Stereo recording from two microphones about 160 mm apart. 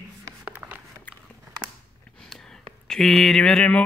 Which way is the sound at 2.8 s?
Centre (ahead or behind).